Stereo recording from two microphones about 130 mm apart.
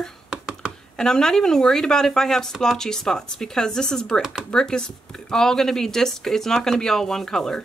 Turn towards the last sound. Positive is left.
turn(degrees=5)  # may be behind; listen again after turning